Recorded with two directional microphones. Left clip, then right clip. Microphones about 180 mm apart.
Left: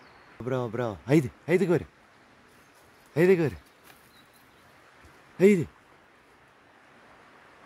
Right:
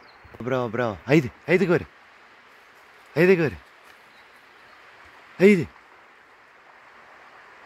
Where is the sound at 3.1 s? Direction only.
10° left (ahead or behind).